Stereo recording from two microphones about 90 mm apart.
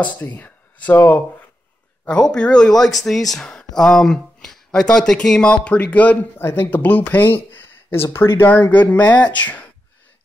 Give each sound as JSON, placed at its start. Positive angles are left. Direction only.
{"t": 0.0, "sound": "speech", "side_deg": 20}